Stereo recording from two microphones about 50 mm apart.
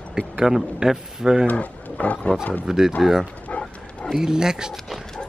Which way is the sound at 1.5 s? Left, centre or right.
Left.